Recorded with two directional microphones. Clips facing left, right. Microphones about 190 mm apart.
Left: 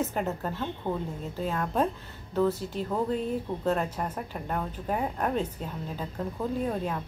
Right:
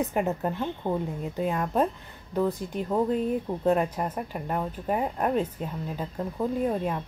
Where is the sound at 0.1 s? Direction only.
15° right (ahead or behind).